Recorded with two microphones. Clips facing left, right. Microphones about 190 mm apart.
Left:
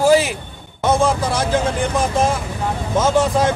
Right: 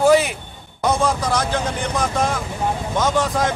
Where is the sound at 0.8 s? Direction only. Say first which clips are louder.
Left 3 dB; 30° left (ahead or behind).